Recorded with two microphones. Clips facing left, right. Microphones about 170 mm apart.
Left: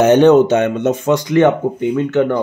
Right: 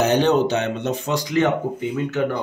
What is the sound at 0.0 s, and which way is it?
Speech, 50° left (ahead or behind).